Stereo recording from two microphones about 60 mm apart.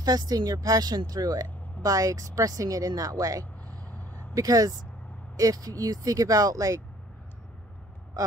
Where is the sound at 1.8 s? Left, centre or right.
Right.